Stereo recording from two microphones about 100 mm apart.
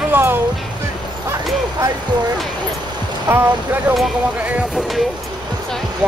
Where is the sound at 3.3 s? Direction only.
20° right (ahead or behind).